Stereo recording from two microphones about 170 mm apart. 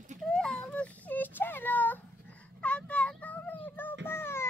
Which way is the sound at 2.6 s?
5° left (ahead or behind).